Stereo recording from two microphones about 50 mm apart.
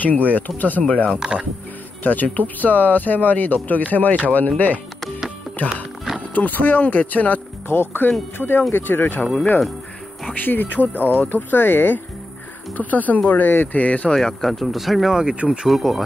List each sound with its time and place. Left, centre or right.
0.0 s speech: left
1.1 s speech: centre
2.0 s speech: left
6.3 s speech: left
7.6 s speech: left
10.3 s speech: left
10.8 s speech: right
11.1 s speech: left
14.1 s speech: centre
15.3 s speech: right
15.6 s speech: centre